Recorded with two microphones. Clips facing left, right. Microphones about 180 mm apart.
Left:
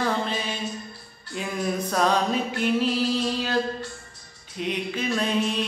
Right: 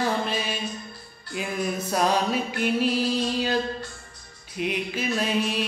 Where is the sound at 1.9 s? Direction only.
10° right (ahead or behind).